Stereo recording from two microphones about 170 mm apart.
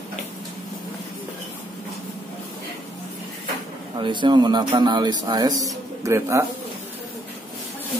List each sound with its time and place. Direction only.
4.0 s speech: 25° right (ahead or behind)